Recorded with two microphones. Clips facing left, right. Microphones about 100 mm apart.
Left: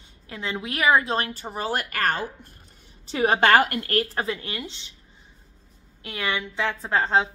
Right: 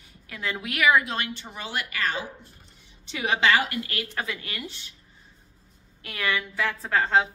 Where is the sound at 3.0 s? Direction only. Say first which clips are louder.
Left 4 dB; 40° left (ahead or behind); by 4.9 s 20° left (ahead or behind).